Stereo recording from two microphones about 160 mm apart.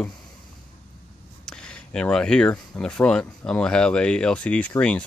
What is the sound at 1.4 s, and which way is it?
Speech, 5° left (ahead or behind).